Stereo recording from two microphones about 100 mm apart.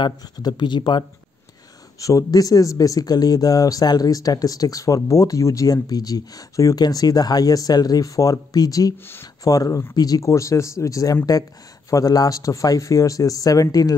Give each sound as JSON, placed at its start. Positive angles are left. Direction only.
{"t": 0.0, "sound": "speech", "side_deg": 45}
{"t": 2.0, "sound": "speech", "side_deg": 35}